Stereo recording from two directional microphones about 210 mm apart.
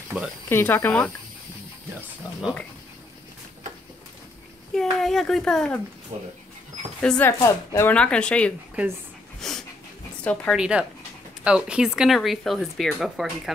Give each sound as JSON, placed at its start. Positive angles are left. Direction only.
{"t": 0.1, "sound": "speech", "side_deg": -5}
{"t": 0.5, "sound": "speech", "side_deg": 10}
{"t": 4.7, "sound": "speech", "side_deg": 0}
{"t": 6.1, "sound": "speech", "side_deg": -25}
{"t": 7.0, "sound": "speech", "side_deg": 5}
{"t": 9.4, "sound": "dog", "side_deg": 0}
{"t": 10.2, "sound": "speech", "side_deg": 5}